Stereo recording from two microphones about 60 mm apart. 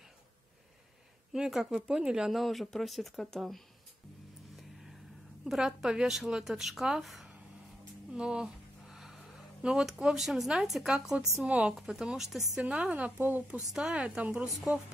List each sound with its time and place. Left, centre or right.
1.3 s speech: centre
2.3 s speech: centre
5.4 s speech: centre
8.1 s a sound: centre
9.6 s speech: centre
11.4 s speech: centre
11.7 s speech: centre
12.6 s speech: right
13.2 s speech: right
13.7 s speech: centre